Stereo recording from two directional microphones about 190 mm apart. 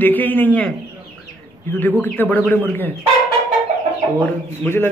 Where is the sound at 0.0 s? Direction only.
10° left (ahead or behind).